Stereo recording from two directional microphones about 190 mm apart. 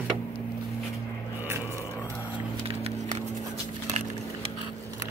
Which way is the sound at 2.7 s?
30° right (ahead or behind).